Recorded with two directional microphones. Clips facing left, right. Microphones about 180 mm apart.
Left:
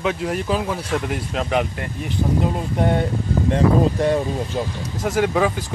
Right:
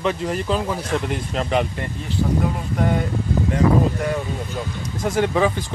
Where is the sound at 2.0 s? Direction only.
25° left (ahead or behind).